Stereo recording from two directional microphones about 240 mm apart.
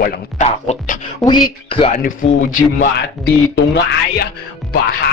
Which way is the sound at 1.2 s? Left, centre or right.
Centre.